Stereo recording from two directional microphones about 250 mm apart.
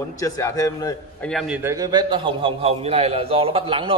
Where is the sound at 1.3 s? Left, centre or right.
Centre.